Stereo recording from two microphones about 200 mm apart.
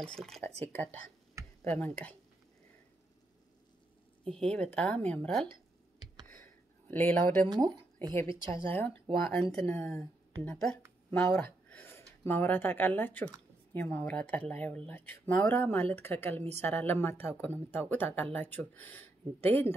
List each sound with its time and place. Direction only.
0.0 s speech: 5° left (ahead or behind)
1.6 s a woman's voice: 10° left (ahead or behind)
4.3 s speech: 5° left (ahead or behind)
6.4 s a sound: 10° left (ahead or behind)
7.4 s speech: 20° right (ahead or behind)
8.6 s a woman's voice: 10° left (ahead or behind)